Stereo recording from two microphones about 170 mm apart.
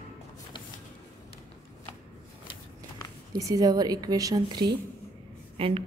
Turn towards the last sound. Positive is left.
turn(degrees=-35)  # may be behind; listen again after turning